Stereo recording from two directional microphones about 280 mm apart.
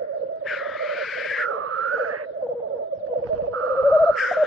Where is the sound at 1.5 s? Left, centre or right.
Right.